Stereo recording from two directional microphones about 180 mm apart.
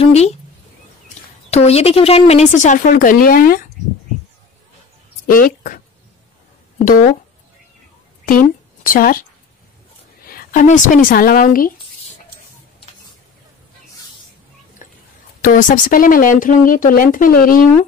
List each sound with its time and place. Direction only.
0.0 s speech: 35° left (ahead or behind)
1.5 s speech: 35° left (ahead or behind); by 3.6 s 50° left (ahead or behind)
5.2 s speech: 50° left (ahead or behind)
6.8 s speech: 50° left (ahead or behind)
8.3 s speech: 50° left (ahead or behind)
10.2 s speech: 50° left (ahead or behind)
14.8 s a sound: 45° left (ahead or behind)
15.4 s speech: 50° left (ahead or behind)